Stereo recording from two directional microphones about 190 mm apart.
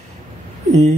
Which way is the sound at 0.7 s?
35° right (ahead or behind).